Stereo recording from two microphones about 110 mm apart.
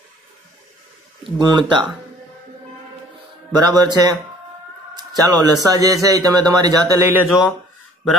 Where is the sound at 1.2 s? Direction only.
45° right (ahead or behind).